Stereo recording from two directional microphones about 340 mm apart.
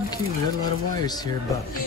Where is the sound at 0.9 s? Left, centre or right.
Centre.